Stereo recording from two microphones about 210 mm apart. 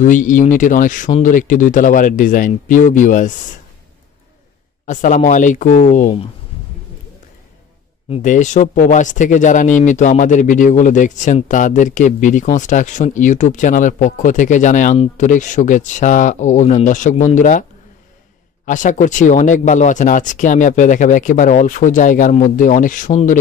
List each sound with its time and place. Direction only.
0.0 s speech: 40° left (ahead or behind)
4.8 s speech: 35° left (ahead or behind)
8.1 s speech: 35° left (ahead or behind)
18.7 s speech: 35° left (ahead or behind)